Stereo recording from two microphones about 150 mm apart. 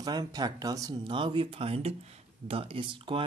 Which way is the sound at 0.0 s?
25° right (ahead or behind).